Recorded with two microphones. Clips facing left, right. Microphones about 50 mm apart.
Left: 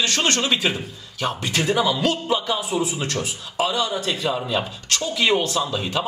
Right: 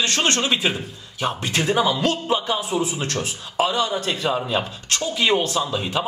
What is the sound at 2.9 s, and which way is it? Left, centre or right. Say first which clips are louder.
Speech: even; right.